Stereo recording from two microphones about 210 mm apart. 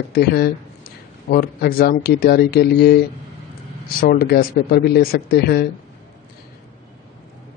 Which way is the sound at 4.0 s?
45° left (ahead or behind).